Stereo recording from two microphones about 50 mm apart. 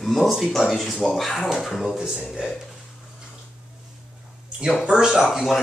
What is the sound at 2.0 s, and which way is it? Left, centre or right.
Speech, centre.